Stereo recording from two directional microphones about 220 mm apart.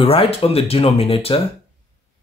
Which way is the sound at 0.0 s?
25° left (ahead or behind).